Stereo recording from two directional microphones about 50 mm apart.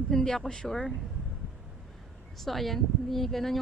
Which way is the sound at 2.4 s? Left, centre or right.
Centre.